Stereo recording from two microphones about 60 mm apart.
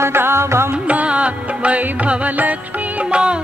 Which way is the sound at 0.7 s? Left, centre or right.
Right.